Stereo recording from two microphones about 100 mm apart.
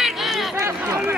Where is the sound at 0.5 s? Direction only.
30° right (ahead or behind).